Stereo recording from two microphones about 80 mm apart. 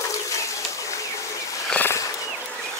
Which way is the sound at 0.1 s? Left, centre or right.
Left.